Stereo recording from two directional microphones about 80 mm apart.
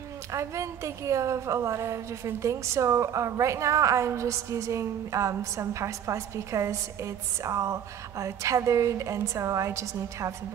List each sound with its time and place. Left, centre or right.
0.3 s a woman's voice: right